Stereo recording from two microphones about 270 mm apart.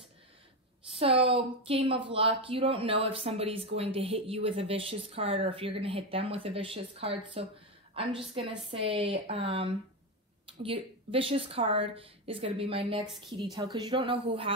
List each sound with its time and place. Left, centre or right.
0.9 s a woman's voice: right